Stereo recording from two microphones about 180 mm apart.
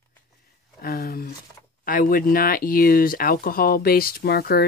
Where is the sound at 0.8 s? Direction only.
55° left (ahead or behind).